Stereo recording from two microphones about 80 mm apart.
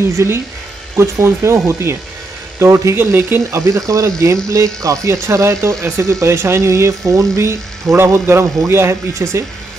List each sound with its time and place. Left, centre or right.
0.2 s speech: right
3.6 s speech: right